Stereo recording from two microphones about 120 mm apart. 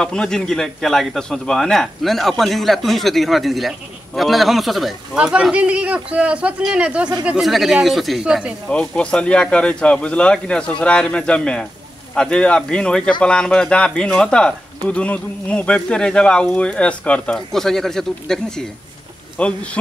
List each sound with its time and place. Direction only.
0.0 s a man's voice: 5° left (ahead or behind)
8.6 s speech: 10° left (ahead or behind)